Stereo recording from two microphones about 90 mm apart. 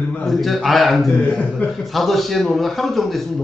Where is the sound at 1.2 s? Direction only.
15° left (ahead or behind).